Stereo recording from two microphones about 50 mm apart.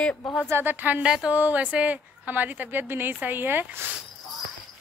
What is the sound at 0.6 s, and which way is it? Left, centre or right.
Speech, right.